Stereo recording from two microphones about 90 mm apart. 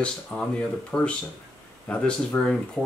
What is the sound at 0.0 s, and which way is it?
Speech, 10° left (ahead or behind).